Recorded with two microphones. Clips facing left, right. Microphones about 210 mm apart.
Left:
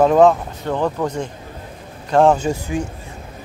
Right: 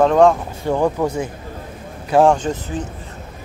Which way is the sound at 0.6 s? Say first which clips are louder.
Right 3 dB; 10° right (ahead or behind).